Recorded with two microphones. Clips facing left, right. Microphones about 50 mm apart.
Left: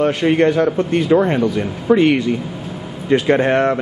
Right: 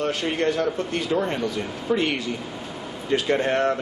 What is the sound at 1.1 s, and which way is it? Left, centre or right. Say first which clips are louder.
Speech: left 10 dB; left.